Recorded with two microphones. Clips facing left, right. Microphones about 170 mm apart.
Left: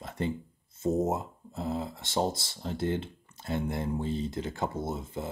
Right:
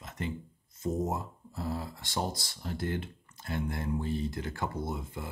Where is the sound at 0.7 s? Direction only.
25° left (ahead or behind).